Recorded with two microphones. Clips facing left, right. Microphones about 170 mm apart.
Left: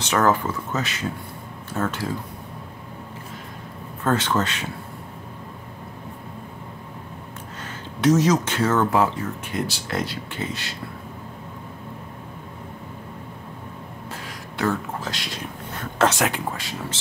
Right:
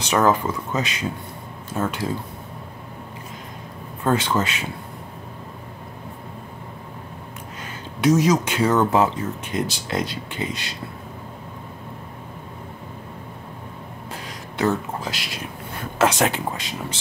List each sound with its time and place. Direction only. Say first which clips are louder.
0.0 s speech: right 1 dB; 15° right (ahead or behind)
4.0 s speech: right 1 dB; 10° right (ahead or behind)
7.6 s speech: even; 10° right (ahead or behind)
14.1 s a sound: right 3 dB; 20° right (ahead or behind)
15.8 s speech: right 1 dB; 10° right (ahead or behind)
16.2 s speech: right 2 dB; 20° right (ahead or behind)